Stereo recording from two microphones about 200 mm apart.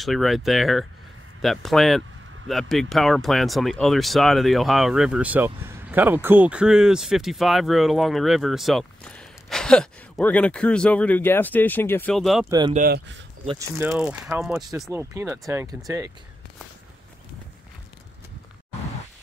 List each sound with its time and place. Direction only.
0.0 s speech: centre (ahead or behind)
12.4 s speech: 20° right (ahead or behind)
12.7 s speech: 50° right (ahead or behind)
13.8 s speech: 5° right (ahead or behind)